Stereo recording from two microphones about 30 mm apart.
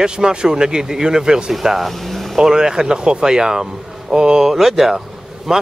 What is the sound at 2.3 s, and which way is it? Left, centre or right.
Speech, centre.